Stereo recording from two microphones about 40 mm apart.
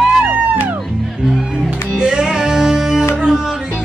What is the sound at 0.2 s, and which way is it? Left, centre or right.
Music, right.